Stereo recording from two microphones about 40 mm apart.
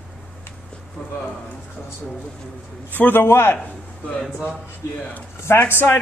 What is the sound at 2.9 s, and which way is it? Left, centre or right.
Speech, left.